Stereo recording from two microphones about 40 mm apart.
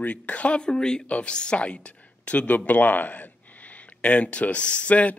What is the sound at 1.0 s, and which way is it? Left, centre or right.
A man's voice, left.